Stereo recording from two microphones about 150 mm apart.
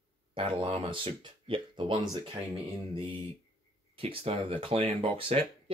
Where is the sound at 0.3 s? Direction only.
35° right (ahead or behind).